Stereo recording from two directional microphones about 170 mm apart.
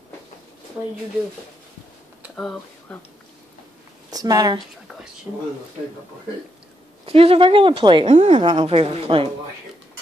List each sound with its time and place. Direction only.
2.3 s speech: 5° left (ahead or behind)
4.1 s speech: 20° right (ahead or behind)
5.3 s speech: 10° right (ahead or behind)
7.1 s a woman's voice: 35° right (ahead or behind)